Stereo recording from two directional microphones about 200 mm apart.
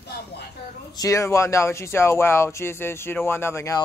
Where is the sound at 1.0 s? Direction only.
15° left (ahead or behind).